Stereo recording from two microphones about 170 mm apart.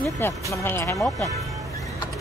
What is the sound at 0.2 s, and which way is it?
Speech, 15° left (ahead or behind).